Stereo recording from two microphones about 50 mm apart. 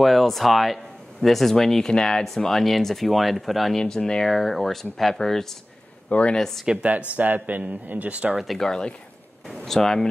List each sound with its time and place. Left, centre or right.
0.0 s speech: centre
3.7 s speech: centre
6.0 s speech: left
6.3 s speech: centre
6.8 s a man's voice: right
8.4 s speech: centre